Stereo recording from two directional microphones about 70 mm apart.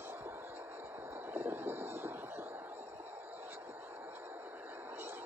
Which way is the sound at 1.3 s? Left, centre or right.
Right.